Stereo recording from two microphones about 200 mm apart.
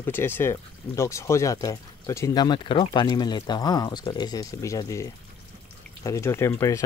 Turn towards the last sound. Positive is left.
turn(degrees=15)  # may be behind; listen again after turning